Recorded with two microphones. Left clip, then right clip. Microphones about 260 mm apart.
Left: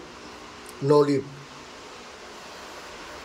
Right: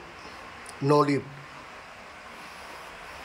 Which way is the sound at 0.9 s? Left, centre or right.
Centre.